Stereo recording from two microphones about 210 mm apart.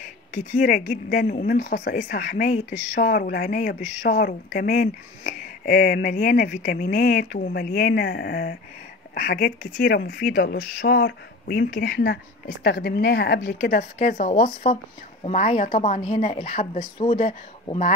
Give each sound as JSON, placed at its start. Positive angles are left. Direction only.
{"t": 0.6, "sound": "speech", "side_deg": 40}
{"t": 1.6, "sound": "speech", "side_deg": 50}